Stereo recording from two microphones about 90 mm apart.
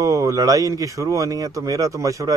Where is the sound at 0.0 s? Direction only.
40° right (ahead or behind).